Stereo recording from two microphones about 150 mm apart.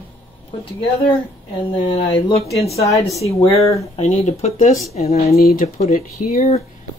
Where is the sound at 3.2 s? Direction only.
40° left (ahead or behind).